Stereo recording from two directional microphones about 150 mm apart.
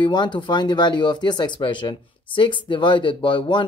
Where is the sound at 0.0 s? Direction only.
30° left (ahead or behind).